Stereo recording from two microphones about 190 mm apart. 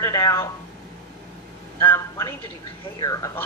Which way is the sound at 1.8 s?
15° left (ahead or behind).